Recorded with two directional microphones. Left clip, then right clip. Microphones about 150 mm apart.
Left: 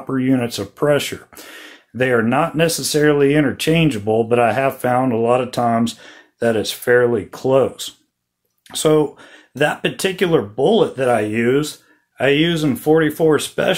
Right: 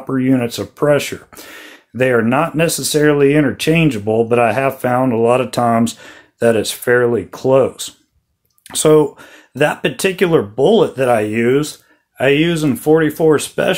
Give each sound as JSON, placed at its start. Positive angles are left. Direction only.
{"t": 0.1, "sound": "speech", "side_deg": -20}
{"t": 8.6, "sound": "speech", "side_deg": -35}